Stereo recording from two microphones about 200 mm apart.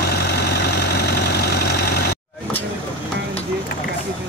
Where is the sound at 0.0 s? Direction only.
55° left (ahead or behind).